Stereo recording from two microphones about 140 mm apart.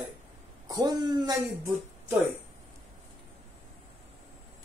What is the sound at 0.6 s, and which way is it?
Speech, 30° right (ahead or behind).